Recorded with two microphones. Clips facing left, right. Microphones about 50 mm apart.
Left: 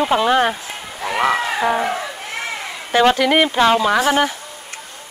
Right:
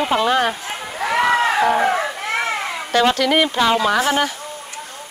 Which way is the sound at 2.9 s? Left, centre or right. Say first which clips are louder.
Left 2 dB; centre.